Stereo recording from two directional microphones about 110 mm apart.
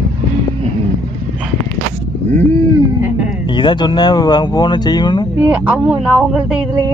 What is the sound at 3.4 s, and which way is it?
Speech, 45° left (ahead or behind).